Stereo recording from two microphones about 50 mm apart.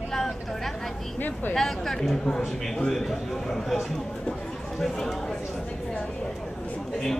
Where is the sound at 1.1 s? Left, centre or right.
Left.